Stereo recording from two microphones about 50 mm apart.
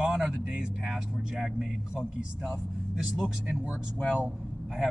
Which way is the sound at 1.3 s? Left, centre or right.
Centre.